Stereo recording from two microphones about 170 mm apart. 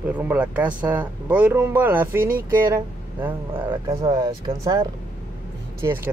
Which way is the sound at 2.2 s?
55° right (ahead or behind).